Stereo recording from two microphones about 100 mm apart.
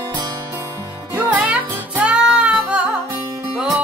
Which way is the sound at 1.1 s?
15° right (ahead or behind).